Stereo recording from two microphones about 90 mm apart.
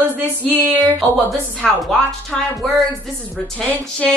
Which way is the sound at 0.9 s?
Centre (ahead or behind).